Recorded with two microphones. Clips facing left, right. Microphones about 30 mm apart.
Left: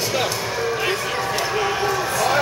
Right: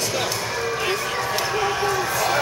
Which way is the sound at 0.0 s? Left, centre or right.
Centre.